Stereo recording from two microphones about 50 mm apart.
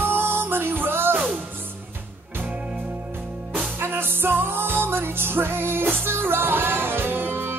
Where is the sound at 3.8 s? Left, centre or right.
Right.